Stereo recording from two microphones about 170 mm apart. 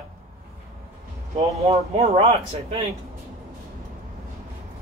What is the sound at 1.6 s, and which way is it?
Speech, 35° right (ahead or behind).